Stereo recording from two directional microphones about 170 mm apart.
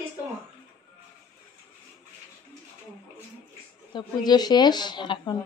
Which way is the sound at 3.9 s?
25° left (ahead or behind).